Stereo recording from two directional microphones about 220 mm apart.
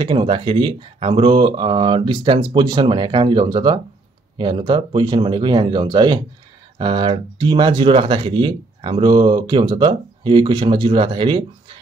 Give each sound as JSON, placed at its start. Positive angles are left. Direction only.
{"t": 0.0, "sound": "speech", "side_deg": -25}